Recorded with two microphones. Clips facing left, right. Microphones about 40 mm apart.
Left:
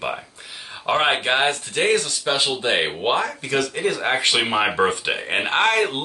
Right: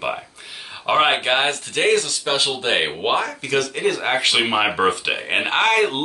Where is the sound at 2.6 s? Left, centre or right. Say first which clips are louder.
Even; centre.